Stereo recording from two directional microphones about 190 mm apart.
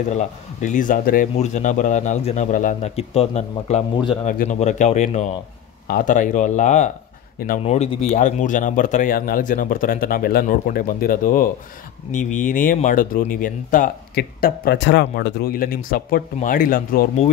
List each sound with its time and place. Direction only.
0.1 s a man's voice: 40° left (ahead or behind)
7.6 s speech: 35° left (ahead or behind)